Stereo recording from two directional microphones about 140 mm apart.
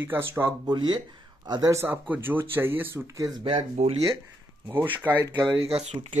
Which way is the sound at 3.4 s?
45° right (ahead or behind).